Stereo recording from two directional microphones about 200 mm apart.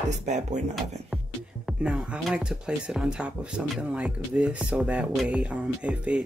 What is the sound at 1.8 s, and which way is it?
Speech, 5° right (ahead or behind).